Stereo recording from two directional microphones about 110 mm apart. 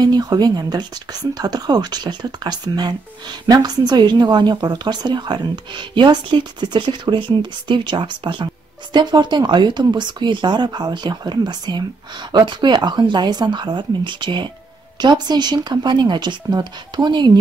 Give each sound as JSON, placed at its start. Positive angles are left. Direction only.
{"t": 0.0, "sound": "speech", "side_deg": -40}